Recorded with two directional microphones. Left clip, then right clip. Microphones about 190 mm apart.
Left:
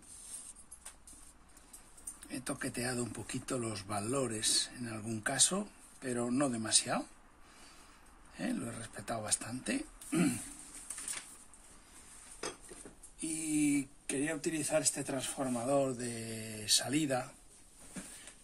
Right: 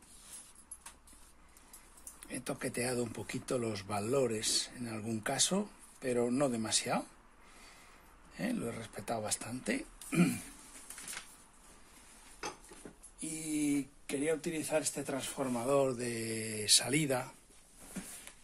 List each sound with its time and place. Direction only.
2.4 s speech: 30° right (ahead or behind)
8.4 s speech: 30° right (ahead or behind)
13.6 s speech: 20° right (ahead or behind); by 17.3 s 35° right (ahead or behind)